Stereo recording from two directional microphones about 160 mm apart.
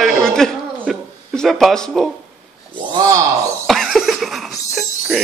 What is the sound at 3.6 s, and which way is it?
Cough, centre (ahead or behind).